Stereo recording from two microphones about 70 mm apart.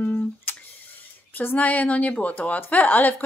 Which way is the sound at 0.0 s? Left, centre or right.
Left.